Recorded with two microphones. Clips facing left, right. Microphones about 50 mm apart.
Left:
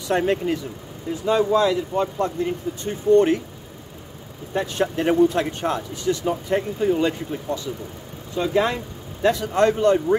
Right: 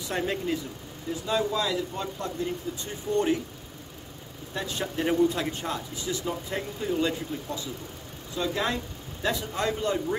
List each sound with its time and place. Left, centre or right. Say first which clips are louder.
0.1 s speech: left 8 dB; left
1.2 s speech: left 9 dB; left
4.5 s speech: left 9 dB; left
4.9 s speech: left 5 dB; left
8.4 s speech: left 7 dB; left
9.2 s speech: left 10 dB; left